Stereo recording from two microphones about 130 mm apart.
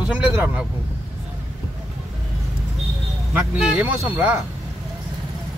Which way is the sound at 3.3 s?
10° right (ahead or behind).